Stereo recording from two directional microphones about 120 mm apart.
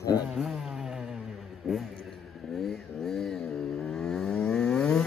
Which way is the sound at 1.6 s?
5° right (ahead or behind).